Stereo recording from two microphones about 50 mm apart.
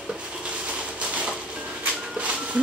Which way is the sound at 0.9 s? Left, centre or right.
Right.